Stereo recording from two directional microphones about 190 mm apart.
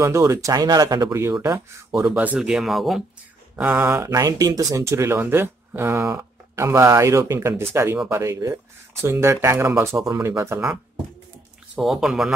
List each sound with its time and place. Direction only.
0.0 s speech: 15° right (ahead or behind)
3.9 s speech: 20° right (ahead or behind); by 12.3 s centre (ahead or behind)